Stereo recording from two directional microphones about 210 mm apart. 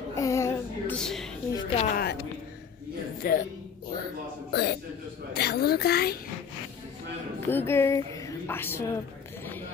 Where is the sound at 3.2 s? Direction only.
45° left (ahead or behind).